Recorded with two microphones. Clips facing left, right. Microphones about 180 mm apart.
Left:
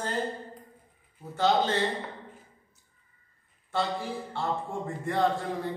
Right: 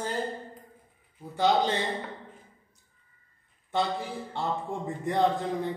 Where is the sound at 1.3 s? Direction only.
15° right (ahead or behind).